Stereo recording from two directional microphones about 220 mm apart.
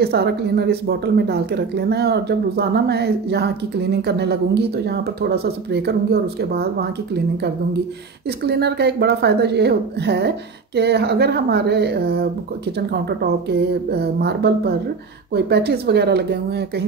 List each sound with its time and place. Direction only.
0.0 s speech: 45° right (ahead or behind)
8.3 s speech: 50° right (ahead or behind)